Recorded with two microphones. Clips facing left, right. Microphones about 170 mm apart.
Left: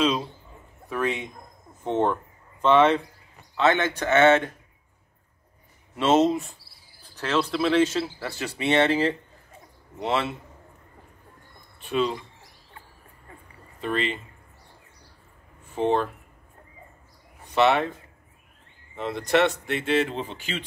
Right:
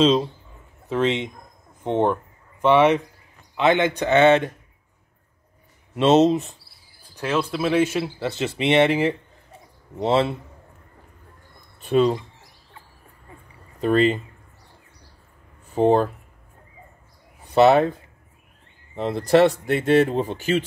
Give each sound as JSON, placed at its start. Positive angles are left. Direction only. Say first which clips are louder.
{"t": 0.8, "sound": "speech", "louder": "right 5 dB", "side_deg": -20}
{"t": 5.9, "sound": "speech", "louder": "right 4 dB", "side_deg": -20}
{"t": 7.2, "sound": "speech", "louder": "right 1 dB", "side_deg": -10}
{"t": 9.9, "sound": "speech", "louder": "right 6 dB", "side_deg": -35}
{"t": 11.8, "sound": "speech", "louder": "right 7 dB", "side_deg": -40}
{"t": 13.7, "sound": "speech", "louder": "right 9 dB", "side_deg": -40}
{"t": 15.7, "sound": "speech", "louder": "right 6 dB", "side_deg": -40}
{"t": 17.5, "sound": "speech", "louder": "right 6 dB", "side_deg": -40}
{"t": 18.9, "sound": "speech", "louder": "right 6 dB", "side_deg": -35}